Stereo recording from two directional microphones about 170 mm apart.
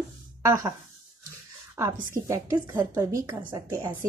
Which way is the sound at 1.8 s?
15° right (ahead or behind).